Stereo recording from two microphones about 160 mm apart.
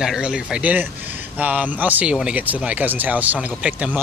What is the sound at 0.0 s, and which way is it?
Speech, 5° right (ahead or behind).